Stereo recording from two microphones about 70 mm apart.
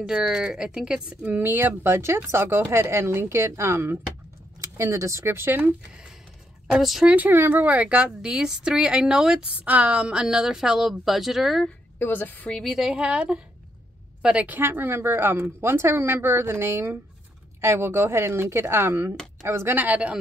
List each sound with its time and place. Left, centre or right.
0.0 s a woman's voice: centre
1.2 s speech: right
6.7 s a woman's voice: centre
7.1 s a woman's voice: right; by 11.6 s centre
12.0 s a woman's voice: left
12.9 s a woman's voice: centre
14.4 s speech: right